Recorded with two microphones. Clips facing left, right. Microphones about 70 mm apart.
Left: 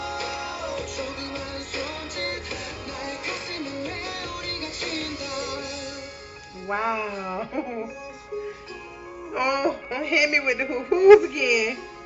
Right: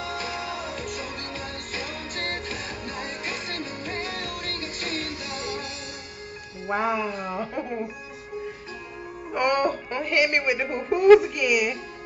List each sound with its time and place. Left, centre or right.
0.1 s music: right
6.7 s speech: centre
9.3 s music: centre